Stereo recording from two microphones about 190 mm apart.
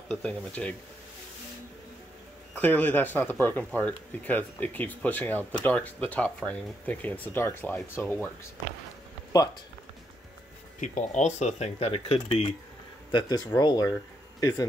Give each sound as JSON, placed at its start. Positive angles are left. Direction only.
{"t": 0.1, "sound": "stir", "side_deg": 5}
{"t": 2.5, "sound": "speech", "side_deg": 10}
{"t": 10.8, "sound": "speech", "side_deg": 40}